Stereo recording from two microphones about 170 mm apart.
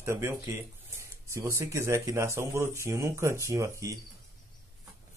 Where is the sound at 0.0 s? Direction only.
15° right (ahead or behind).